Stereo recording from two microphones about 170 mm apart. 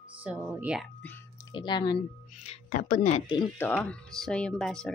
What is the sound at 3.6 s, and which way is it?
Speech, 10° left (ahead or behind).